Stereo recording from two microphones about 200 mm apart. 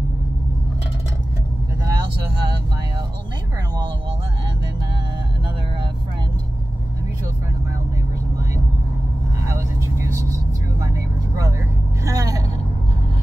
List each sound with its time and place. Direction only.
10.0 s vehicle: 15° right (ahead or behind)
12.0 s vehicle: 15° right (ahead or behind)